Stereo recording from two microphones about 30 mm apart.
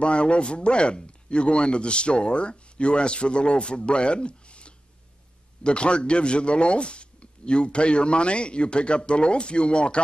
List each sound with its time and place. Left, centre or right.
0.0 s speech: left